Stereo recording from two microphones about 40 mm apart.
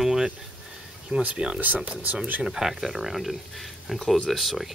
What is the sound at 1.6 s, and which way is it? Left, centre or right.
Speech, right.